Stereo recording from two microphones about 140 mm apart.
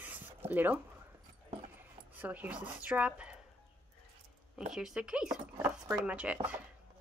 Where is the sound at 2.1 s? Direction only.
10° right (ahead or behind).